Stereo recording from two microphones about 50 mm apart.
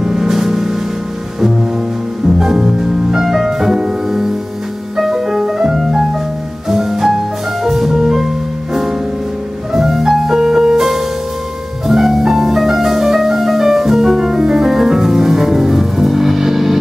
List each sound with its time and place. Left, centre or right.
0.0 s music: centre
2.2 s music: centre
9.7 s music: centre